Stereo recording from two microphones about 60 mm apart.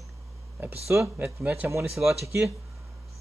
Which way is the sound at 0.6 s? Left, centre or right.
Right.